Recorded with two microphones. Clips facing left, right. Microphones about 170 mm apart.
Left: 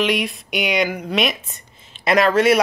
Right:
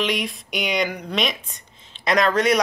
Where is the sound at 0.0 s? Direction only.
Centre (ahead or behind).